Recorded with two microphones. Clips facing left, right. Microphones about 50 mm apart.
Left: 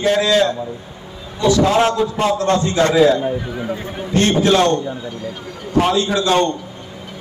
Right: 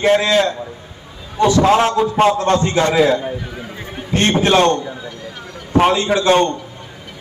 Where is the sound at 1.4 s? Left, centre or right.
Right.